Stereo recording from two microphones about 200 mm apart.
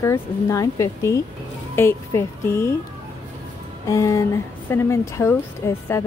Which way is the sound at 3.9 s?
15° left (ahead or behind).